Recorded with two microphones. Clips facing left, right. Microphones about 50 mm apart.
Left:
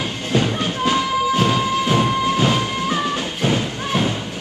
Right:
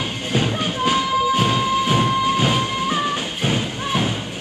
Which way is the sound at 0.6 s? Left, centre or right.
Centre.